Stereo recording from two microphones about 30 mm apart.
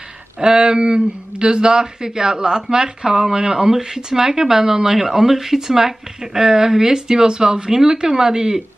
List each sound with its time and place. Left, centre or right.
0.4 s speech: right